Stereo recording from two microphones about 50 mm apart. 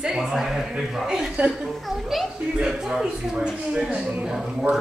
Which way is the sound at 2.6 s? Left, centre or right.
Centre.